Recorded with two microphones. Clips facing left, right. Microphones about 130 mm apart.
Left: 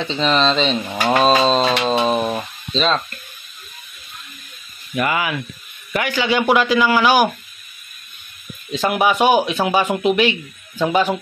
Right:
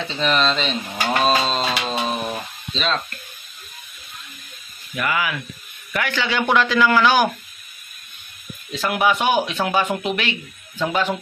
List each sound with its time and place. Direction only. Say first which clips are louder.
0.1 s speech: left 3 dB; 30° left (ahead or behind)
1.9 s a sound: left 6 dB; 30° left (ahead or behind)
4.9 s speech: left 3 dB; 25° left (ahead or behind)
5.9 s speech: left 4 dB; 15° left (ahead or behind)
8.7 s speech: left 3 dB; 15° left (ahead or behind)